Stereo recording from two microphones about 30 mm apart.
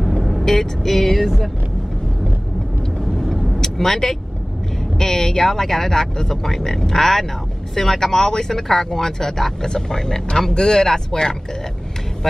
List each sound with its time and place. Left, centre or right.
0.2 s vehicle: centre
0.6 s speech: centre
3.0 s vehicle: centre
3.6 s speech: centre